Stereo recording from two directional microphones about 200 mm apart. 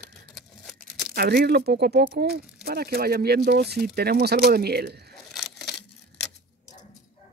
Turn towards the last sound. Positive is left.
turn(degrees=0)  # may be behind; listen again after turning